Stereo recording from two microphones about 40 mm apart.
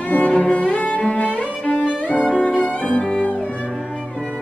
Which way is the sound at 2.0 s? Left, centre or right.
Left.